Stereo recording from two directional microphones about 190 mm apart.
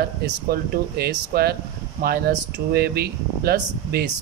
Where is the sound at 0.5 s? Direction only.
55° right (ahead or behind).